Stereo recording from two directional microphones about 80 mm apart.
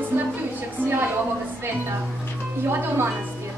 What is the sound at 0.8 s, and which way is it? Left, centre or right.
Speech, right.